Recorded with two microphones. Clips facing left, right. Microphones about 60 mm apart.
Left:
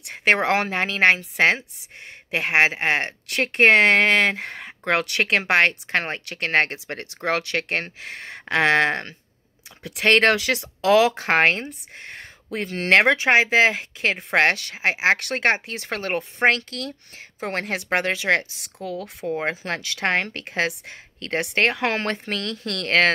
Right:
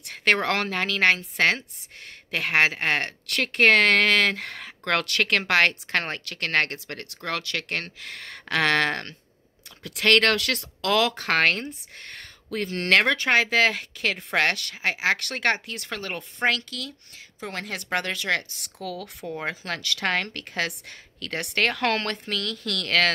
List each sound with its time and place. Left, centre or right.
0.1 s speech: centre
14.1 s speech: left
17.9 s speech: left
21.7 s speech: centre
22.0 s speech: left